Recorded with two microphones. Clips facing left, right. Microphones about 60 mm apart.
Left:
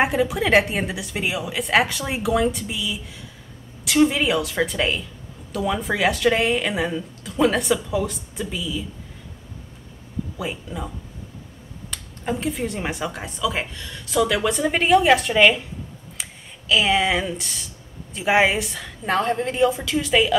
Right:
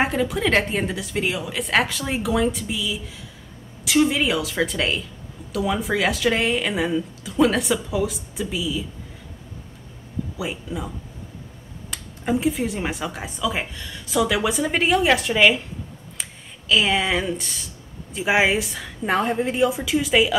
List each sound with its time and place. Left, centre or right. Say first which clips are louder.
0.0 s speech: left 1 dB; centre
10.3 s speech: right 1 dB; centre
11.9 s speech: right 4 dB; centre